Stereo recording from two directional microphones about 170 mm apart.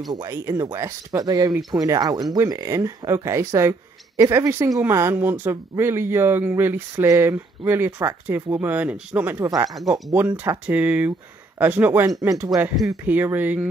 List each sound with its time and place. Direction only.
0.1 s speech: 20° right (ahead or behind)
9.8 s speech: centre (ahead or behind)
10.2 s speech: 15° right (ahead or behind)